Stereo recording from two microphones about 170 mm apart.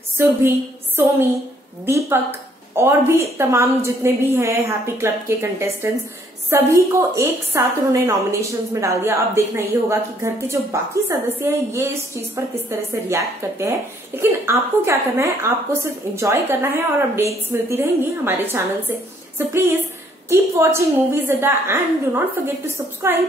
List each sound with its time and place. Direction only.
0.2 s a woman's voice: 15° right (ahead or behind)
1.9 s a woman's voice: 15° right (ahead or behind)